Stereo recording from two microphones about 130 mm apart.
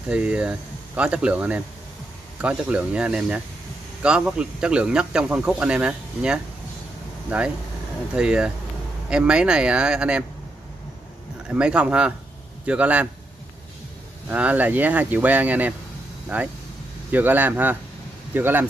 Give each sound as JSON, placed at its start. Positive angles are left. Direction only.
{"t": 0.1, "sound": "speech", "side_deg": -10}
{"t": 11.4, "sound": "speech", "side_deg": -10}
{"t": 14.3, "sound": "speech", "side_deg": -10}